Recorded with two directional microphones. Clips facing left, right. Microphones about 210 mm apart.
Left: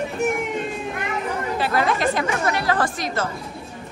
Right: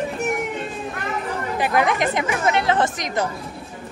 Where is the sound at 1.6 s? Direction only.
15° right (ahead or behind).